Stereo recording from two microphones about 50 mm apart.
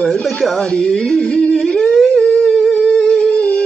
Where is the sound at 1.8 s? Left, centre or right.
Centre.